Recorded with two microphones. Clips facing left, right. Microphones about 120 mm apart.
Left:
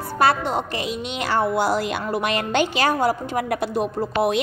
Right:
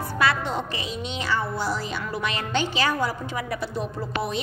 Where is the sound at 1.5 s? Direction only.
85° left.